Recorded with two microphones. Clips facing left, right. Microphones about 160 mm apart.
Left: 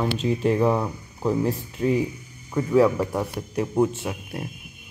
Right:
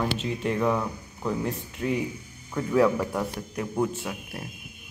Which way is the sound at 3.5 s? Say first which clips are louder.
Left 6 dB; 25° left (ahead or behind).